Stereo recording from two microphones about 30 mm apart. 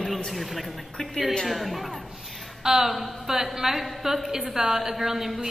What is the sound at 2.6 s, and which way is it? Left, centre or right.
A woman's voice, centre.